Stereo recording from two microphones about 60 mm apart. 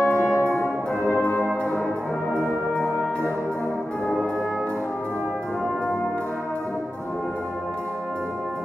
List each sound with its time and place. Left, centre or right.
0.0 s brass instrument: left